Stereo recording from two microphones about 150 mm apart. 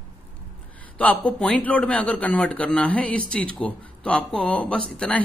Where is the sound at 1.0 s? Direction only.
10° left (ahead or behind).